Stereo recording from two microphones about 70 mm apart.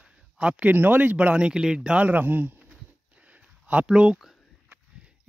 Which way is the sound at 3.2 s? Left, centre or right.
Centre.